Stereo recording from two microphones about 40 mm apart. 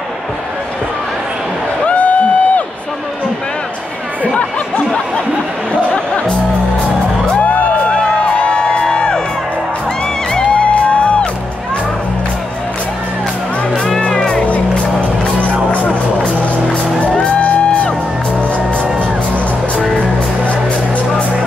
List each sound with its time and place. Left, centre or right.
1.9 s a sound: left
4.7 s snicker: left
5.7 s music: left
7.3 s music: left
7.9 s music: left
10.3 s music: left
14.0 s music: left
17.0 s music: left
18.9 s music: left